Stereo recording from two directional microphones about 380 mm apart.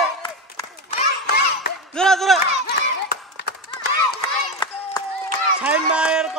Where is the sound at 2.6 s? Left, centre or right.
Left.